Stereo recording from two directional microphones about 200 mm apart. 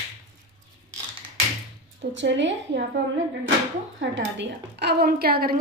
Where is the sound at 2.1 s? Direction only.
65° right (ahead or behind).